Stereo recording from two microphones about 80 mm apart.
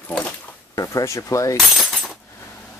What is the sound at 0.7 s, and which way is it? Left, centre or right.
Speech, left.